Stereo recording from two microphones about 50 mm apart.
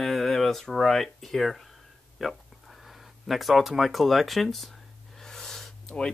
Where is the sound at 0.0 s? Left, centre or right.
Centre.